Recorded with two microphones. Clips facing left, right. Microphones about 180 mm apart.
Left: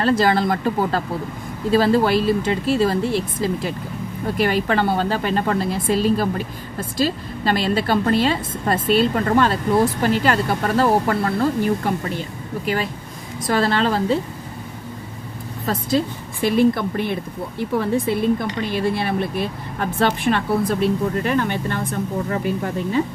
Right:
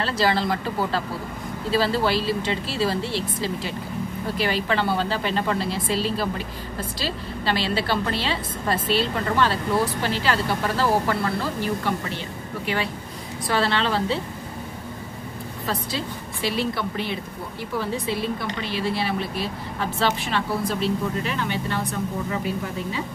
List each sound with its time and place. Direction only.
0.0 s speech: 50° left (ahead or behind)
13.5 s speech: 45° left (ahead or behind)
15.6 s speech: 50° left (ahead or behind)